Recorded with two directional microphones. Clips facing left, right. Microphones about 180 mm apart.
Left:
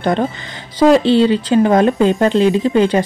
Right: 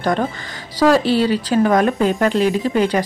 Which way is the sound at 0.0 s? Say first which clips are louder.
Left 3 dB; 25° left (ahead or behind).